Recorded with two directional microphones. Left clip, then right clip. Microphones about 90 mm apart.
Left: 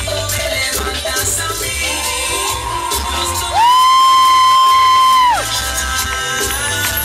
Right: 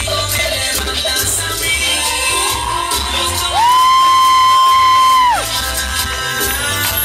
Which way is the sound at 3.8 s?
Centre (ahead or behind).